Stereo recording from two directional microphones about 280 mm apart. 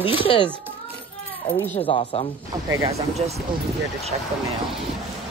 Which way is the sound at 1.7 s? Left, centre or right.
Left.